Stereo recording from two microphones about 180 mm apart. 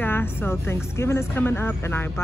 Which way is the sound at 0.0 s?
10° left (ahead or behind).